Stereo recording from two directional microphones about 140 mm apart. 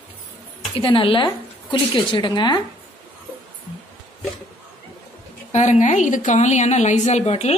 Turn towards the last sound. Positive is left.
turn(degrees=50)  # may be behind; listen again after turning